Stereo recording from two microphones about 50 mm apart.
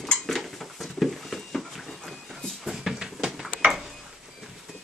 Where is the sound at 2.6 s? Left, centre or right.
Centre.